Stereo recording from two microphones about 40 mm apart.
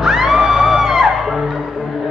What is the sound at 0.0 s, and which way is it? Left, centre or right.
Music, centre.